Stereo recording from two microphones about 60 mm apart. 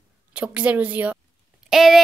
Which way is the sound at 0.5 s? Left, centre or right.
Right.